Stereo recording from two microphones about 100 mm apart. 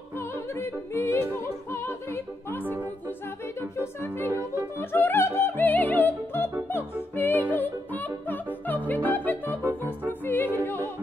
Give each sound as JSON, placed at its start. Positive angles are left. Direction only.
{"t": 0.2, "sound": "opera", "side_deg": 25}
{"t": 3.7, "sound": "music", "side_deg": 25}